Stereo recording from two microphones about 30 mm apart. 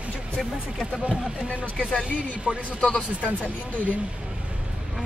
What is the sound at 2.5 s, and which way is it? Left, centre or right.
Speech, right.